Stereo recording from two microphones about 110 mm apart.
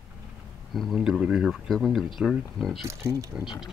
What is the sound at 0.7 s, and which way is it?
Speech, centre (ahead or behind).